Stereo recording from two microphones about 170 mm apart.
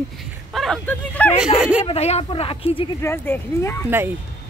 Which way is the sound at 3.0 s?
15° left (ahead or behind).